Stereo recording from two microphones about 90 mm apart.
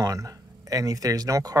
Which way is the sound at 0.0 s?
40° right (ahead or behind).